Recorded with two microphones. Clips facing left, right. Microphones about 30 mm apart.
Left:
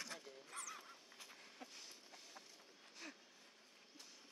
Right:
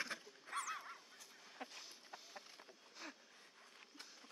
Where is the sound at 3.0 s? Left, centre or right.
Centre.